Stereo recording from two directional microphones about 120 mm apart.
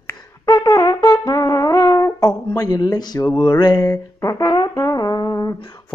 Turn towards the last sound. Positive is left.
turn(degrees=35)  # may be behind; listen again after turning